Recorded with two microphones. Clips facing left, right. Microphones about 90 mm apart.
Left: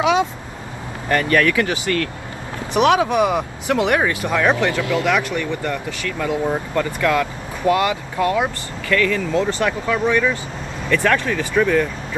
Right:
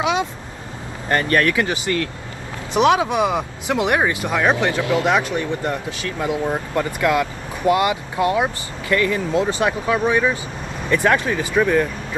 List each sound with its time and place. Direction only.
1.0 s speech: 25° right (ahead or behind)